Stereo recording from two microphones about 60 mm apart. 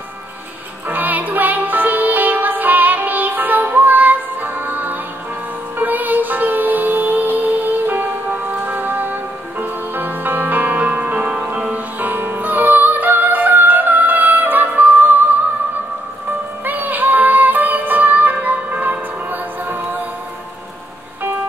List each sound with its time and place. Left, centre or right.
0.8 s music: right
16.6 s music: right